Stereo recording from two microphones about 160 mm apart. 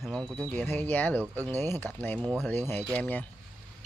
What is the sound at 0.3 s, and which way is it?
Speech, 5° left (ahead or behind).